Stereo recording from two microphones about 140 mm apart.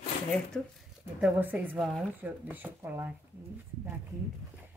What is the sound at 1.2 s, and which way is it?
Speech, 10° right (ahead or behind).